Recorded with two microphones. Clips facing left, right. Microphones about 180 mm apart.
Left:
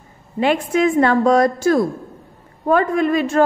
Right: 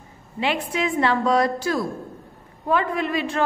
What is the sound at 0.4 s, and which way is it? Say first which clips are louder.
A woman's voice: left 8 dB; 50° left (ahead or behind).